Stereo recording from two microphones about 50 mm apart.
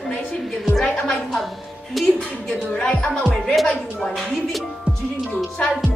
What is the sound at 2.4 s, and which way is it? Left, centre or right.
Speech, centre.